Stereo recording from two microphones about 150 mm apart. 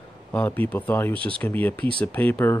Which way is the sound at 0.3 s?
10° left (ahead or behind).